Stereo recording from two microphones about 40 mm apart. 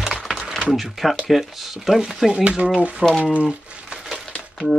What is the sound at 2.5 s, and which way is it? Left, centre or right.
Speech, right.